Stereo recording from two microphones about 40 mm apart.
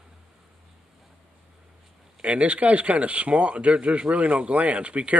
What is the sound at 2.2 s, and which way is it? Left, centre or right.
Speech, right.